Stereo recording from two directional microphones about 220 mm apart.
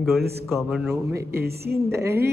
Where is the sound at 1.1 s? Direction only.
15° right (ahead or behind).